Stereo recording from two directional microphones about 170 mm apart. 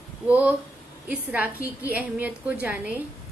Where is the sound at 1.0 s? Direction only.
10° right (ahead or behind).